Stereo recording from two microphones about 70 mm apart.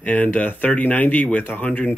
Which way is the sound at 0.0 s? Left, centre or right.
Left.